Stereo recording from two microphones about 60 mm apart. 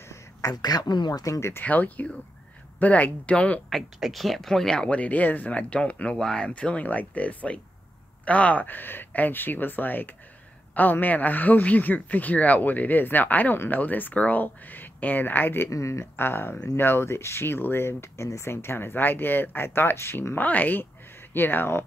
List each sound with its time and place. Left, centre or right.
0.1 s speech: left
1.6 s speech: left
3.7 s speech: centre; by 15.7 s left
15.7 s speech: left
20.4 s speech: left